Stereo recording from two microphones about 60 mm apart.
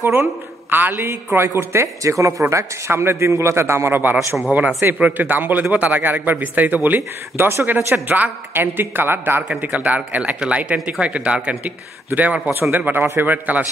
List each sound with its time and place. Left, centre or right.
0.0 s a man's voice: right
2.5 s a man's voice: right
4.5 s a man's voice: right
9.5 s speech: right
12.7 s a man's voice: right
13.3 s speech: right